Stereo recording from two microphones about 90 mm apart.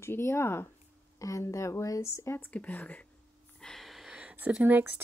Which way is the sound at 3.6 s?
Centre (ahead or behind).